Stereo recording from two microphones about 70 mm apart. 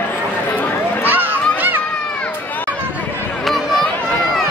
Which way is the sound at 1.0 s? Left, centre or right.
Right.